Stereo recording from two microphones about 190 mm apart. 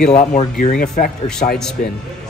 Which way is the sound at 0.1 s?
35° left (ahead or behind).